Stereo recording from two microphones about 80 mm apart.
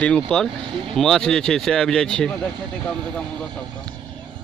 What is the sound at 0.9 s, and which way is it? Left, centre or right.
Speech, centre.